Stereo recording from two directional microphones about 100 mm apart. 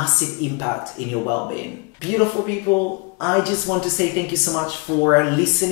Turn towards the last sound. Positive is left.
turn(degrees=10)  # may be behind; listen again after turning